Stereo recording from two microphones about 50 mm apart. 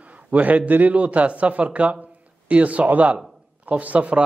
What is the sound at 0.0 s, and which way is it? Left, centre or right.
A man's voice, right.